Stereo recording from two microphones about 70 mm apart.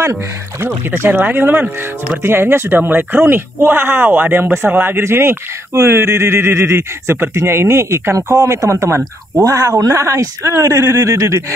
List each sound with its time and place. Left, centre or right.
0.6 s speech: right
9.4 s speech: right